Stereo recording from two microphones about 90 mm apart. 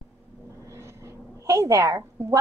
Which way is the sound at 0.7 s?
30° right (ahead or behind).